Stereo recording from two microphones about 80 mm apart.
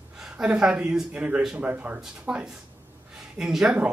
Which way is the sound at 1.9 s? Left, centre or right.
Centre.